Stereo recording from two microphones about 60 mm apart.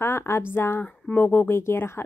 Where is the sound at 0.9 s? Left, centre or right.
Left.